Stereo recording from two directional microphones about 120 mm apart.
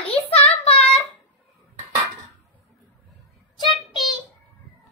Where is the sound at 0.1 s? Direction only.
55° left (ahead or behind).